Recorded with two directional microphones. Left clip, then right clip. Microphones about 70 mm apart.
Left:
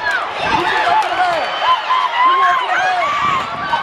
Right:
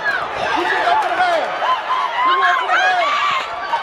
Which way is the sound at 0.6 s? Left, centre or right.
Centre.